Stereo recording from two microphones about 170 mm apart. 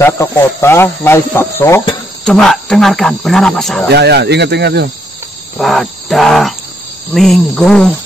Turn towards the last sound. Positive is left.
turn(degrees=5)  # may be behind; listen again after turning